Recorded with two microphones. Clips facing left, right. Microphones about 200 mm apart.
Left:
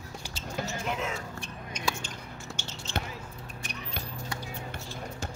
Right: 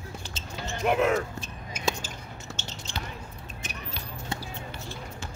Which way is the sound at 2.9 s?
15° right (ahead or behind).